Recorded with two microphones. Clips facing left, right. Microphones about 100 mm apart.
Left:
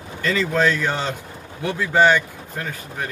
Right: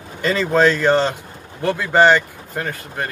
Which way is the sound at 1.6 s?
60° right (ahead or behind).